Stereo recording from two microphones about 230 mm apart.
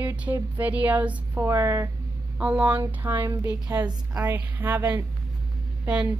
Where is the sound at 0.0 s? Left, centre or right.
Centre.